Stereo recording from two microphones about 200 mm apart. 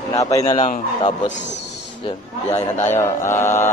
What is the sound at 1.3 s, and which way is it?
Speech, 60° left (ahead or behind).